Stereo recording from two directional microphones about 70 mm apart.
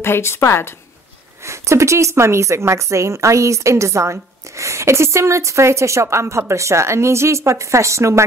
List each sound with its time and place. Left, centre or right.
0.0 s a woman's voice: left
1.4 s a woman's voice: right